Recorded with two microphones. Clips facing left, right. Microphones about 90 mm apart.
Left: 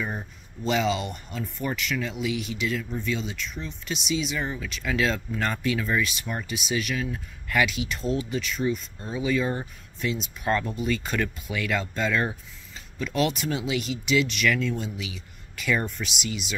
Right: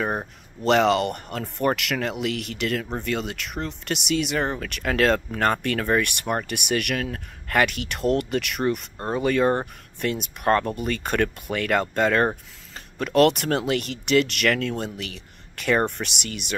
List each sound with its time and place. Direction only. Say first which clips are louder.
0.0 s speech: right 6 dB; 55° right (ahead or behind)